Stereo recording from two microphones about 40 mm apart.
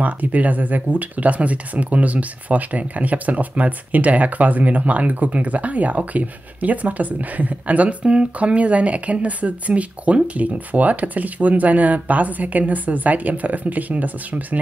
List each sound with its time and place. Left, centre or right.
0.0 s speech: right